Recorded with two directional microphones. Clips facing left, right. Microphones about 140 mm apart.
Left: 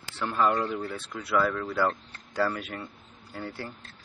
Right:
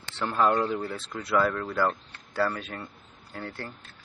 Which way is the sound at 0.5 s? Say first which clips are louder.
Right 2 dB; centre (ahead or behind).